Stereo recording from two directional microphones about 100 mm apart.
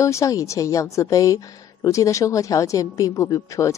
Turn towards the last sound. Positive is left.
turn(degrees=35)  # may be behind; listen again after turning